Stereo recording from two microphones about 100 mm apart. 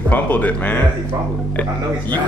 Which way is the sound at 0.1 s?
15° left (ahead or behind).